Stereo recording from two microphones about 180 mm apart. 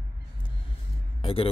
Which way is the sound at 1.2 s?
30° left (ahead or behind).